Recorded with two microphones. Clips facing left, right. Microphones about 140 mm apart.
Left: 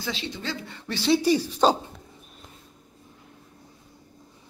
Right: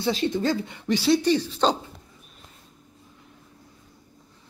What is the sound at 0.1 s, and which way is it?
Speech, 45° right (ahead or behind).